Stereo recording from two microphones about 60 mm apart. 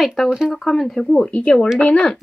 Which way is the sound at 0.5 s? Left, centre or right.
Centre.